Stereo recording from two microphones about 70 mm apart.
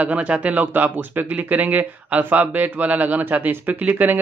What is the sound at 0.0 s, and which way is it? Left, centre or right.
Speech, centre.